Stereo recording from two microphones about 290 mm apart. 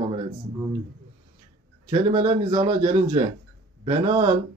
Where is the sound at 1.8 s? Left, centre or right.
Centre.